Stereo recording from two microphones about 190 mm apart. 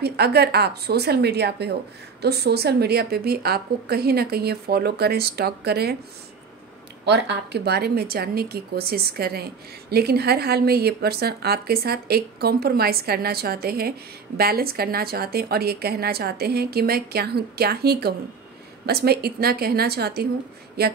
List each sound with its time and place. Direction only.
0.0 s a woman's voice: 60° right (ahead or behind)
7.1 s a woman's voice: 60° right (ahead or behind)